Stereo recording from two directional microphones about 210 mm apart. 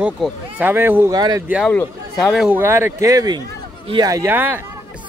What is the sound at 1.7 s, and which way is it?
Speech, centre (ahead or behind).